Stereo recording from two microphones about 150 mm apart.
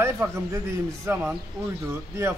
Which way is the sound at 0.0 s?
20° right (ahead or behind).